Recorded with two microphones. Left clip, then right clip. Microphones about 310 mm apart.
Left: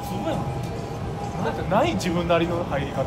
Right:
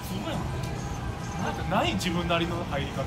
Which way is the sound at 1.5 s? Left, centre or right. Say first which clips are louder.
Left 5 dB; centre.